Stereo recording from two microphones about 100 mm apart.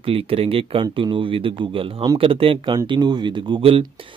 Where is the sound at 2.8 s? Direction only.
45° right (ahead or behind); by 3.9 s 60° right (ahead or behind).